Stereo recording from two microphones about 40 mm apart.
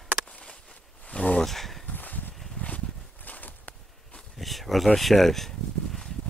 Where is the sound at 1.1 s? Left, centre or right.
Left.